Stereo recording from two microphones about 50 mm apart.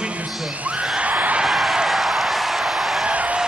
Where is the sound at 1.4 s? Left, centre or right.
Centre.